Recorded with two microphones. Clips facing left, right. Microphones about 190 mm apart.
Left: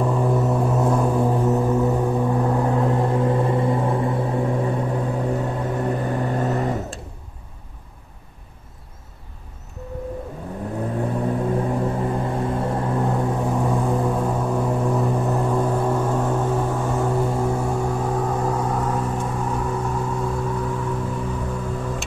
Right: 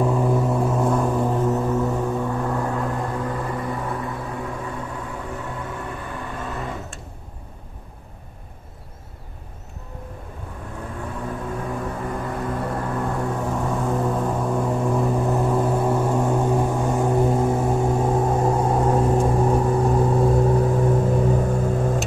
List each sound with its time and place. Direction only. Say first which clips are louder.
0.0 s vehicle: even; centre (ahead or behind); by 7.0 s 40° left (ahead or behind)
11.0 s vehicle: left 7 dB; 35° left (ahead or behind); by 22.0 s 45° right (ahead or behind)